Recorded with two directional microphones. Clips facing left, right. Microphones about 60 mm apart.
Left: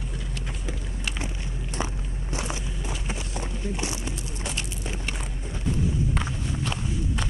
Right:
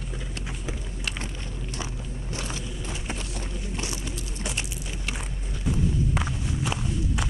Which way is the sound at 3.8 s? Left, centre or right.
Left.